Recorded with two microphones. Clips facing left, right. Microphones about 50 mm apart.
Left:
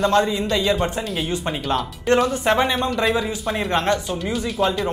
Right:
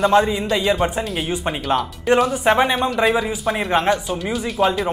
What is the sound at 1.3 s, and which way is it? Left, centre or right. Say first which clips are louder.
Speech: right 3 dB; centre.